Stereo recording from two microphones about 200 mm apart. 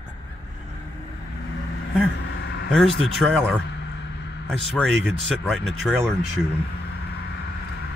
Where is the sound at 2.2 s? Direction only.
60° left (ahead or behind).